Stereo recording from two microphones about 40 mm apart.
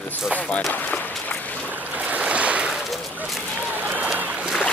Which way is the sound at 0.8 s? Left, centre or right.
Left.